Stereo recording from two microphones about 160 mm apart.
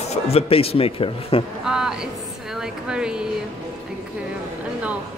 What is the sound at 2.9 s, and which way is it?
Speech, 5° right (ahead or behind).